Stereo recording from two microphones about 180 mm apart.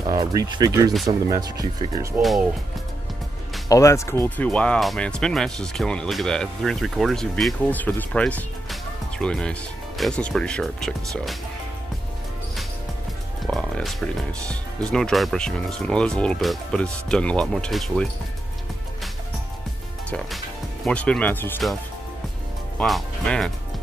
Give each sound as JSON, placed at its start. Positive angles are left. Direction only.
{"t": 0.0, "sound": "speech", "side_deg": -20}
{"t": 3.6, "sound": "speech", "side_deg": 15}
{"t": 13.5, "sound": "music", "side_deg": 0}
{"t": 14.5, "sound": "speech", "side_deg": 5}
{"t": 20.1, "sound": "speech", "side_deg": 0}
{"t": 22.8, "sound": "speech", "side_deg": 0}